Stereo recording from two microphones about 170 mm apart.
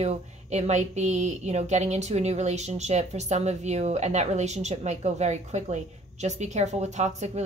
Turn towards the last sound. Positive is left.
turn(degrees=-40)  # may be behind; listen again after turning